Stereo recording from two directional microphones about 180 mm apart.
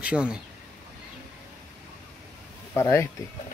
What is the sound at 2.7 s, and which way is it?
Speech, 15° left (ahead or behind).